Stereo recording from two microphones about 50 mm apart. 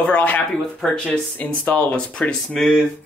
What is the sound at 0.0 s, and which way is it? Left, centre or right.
Speech, left.